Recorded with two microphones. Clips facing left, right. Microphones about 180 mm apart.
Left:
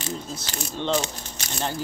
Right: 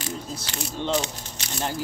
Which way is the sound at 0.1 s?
10° right (ahead or behind).